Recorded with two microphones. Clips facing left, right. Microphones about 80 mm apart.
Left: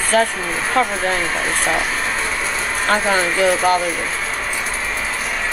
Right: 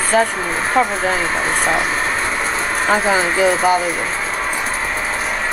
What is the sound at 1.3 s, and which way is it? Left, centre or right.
Speech, right.